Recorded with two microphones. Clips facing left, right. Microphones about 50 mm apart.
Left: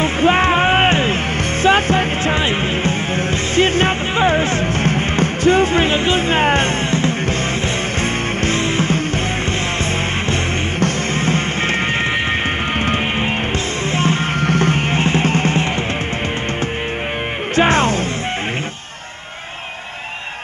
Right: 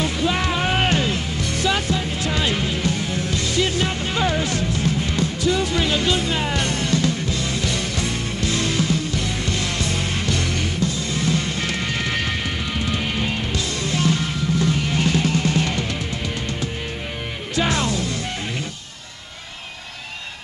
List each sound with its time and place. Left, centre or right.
0.0 s music: left
10.8 s music: left
12.7 s music: left
14.4 s music: left
17.6 s music: left